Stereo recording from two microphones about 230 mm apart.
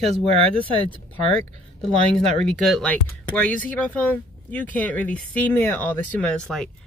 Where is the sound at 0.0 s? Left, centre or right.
Right.